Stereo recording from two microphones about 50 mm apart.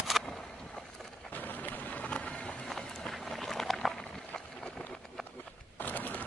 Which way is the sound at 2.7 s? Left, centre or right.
Centre.